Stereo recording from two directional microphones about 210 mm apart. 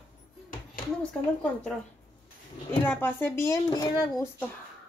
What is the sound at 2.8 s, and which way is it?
Speech, 10° left (ahead or behind).